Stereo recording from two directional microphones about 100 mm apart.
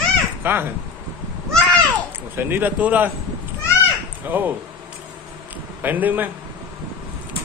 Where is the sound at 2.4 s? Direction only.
20° right (ahead or behind).